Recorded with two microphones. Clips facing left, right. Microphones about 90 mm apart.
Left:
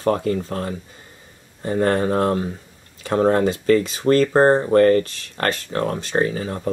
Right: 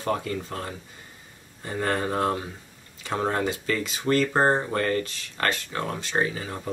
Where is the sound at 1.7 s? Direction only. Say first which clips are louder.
Left 8 dB; 35° left (ahead or behind).